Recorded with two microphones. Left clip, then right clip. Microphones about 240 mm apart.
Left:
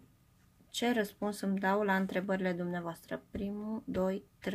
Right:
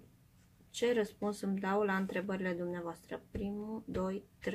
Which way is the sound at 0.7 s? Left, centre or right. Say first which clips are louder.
Even; left.